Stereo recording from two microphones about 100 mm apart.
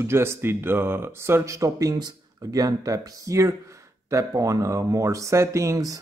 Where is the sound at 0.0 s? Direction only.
25° right (ahead or behind).